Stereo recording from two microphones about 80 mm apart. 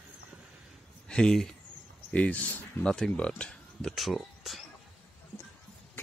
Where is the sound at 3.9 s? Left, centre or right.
Centre.